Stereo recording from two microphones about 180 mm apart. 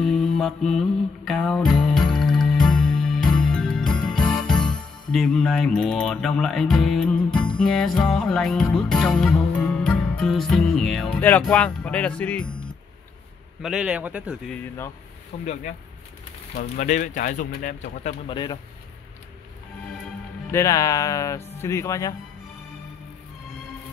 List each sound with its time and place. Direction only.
0.0 s music: centre (ahead or behind)
13.6 s a man's voice: 5° right (ahead or behind)
15.3 s speech: 40° left (ahead or behind)
16.5 s speech: 45° left (ahead or behind)
18.3 s speech: 25° left (ahead or behind)
20.5 s speech: 20° left (ahead or behind)